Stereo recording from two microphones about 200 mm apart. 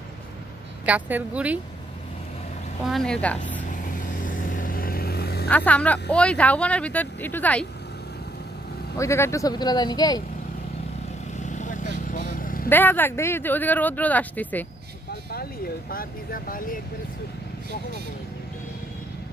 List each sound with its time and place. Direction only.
0.8 s a woman's voice: 10° right (ahead or behind)
2.9 s a woman's voice: 5° left (ahead or behind)
3.6 s vehicle: 40° left (ahead or behind)
5.5 s speech: 5° left (ahead or behind)
8.9 s a man's voice: 15° left (ahead or behind)
11.4 s vehicle: 40° left (ahead or behind)
12.6 s speech: 10° left (ahead or behind)
15.3 s speech: 50° left (ahead or behind)